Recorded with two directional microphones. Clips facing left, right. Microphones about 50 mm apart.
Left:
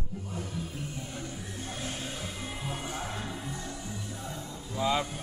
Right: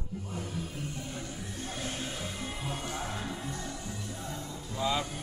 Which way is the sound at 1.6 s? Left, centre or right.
Centre.